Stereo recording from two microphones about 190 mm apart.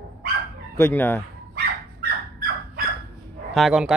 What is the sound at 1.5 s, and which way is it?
Dog, 55° right (ahead or behind).